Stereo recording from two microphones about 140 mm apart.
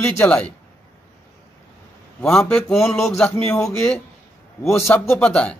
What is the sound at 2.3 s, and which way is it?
A man's voice, 5° left (ahead or behind).